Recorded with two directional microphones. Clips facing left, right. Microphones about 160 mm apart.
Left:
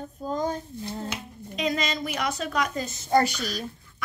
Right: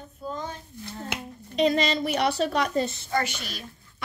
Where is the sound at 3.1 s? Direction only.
35° left (ahead or behind).